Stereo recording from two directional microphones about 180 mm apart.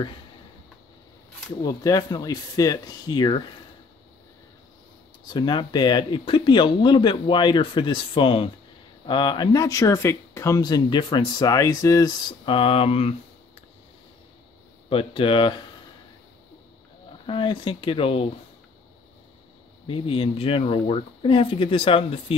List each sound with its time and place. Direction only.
1.6 s speech: 20° left (ahead or behind)
5.3 s speech: 25° left (ahead or behind)
14.9 s speech: 30° left (ahead or behind)
17.3 s speech: 25° left (ahead or behind)
19.9 s speech: 30° left (ahead or behind)